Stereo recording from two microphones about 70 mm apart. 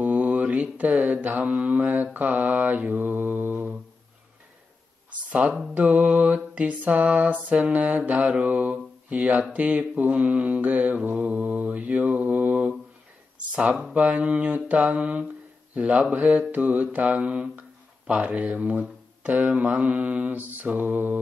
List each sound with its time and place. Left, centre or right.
0.0 s mantra: right
5.8 s mantra: right
13.5 s speech: centre
13.9 s mantra: centre